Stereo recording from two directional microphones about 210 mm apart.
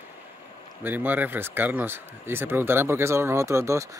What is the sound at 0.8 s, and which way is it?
Speech, 10° right (ahead or behind).